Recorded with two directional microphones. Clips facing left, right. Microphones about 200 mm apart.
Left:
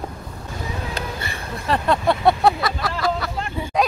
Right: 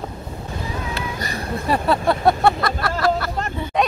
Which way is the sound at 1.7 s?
5° right (ahead or behind).